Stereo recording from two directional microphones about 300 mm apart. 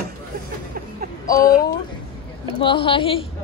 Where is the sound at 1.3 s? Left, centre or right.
Centre.